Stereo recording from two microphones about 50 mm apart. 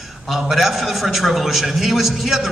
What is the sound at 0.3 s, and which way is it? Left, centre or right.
A man's voice, centre.